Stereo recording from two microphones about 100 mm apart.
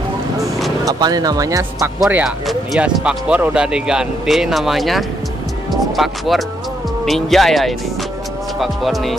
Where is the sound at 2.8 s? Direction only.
10° right (ahead or behind).